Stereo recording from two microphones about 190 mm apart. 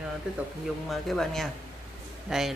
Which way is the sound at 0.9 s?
Centre (ahead or behind).